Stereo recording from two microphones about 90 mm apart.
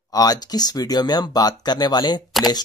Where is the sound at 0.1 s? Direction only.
45° left (ahead or behind).